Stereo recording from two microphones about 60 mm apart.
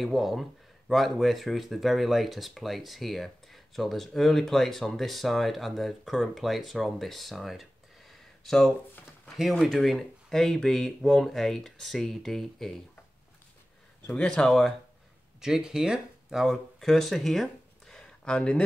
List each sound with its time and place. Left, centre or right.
0.0 s speech: centre
8.1 s a sound: centre
9.4 s speech: centre
14.2 s speech: centre
15.4 s speech: centre
16.8 s speech: centre
18.2 s speech: centre